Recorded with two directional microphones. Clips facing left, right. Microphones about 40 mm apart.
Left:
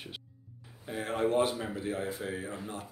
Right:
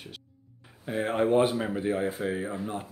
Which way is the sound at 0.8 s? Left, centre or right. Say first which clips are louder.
Right 5 dB; right.